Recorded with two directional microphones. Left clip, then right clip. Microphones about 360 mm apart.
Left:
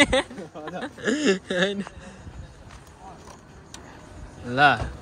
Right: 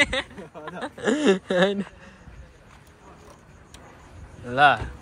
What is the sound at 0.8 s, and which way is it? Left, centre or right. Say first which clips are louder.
Speech: right 2 dB; centre.